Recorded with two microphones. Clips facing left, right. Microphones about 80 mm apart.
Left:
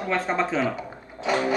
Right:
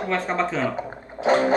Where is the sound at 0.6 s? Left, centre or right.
Right.